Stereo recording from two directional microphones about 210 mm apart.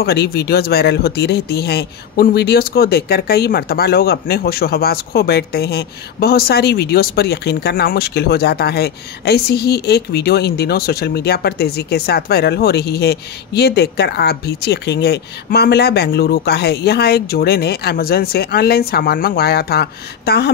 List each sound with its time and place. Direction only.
0.0 s speech: 50° left (ahead or behind)